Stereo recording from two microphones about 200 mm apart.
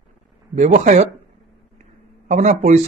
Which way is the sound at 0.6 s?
35° right (ahead or behind).